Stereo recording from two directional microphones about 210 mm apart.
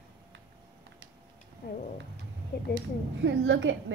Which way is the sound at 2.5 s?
50° left (ahead or behind).